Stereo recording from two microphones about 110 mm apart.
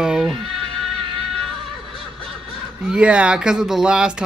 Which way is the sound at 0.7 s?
50° right (ahead or behind).